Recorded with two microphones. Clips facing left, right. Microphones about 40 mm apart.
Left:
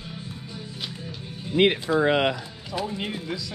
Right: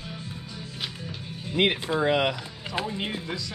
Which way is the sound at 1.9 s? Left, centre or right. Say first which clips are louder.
Left 1 dB; left.